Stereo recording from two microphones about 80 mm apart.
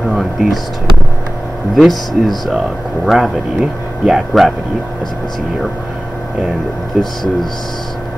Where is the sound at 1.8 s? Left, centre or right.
Centre.